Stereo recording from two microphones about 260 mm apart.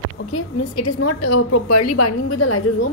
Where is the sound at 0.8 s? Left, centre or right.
Left.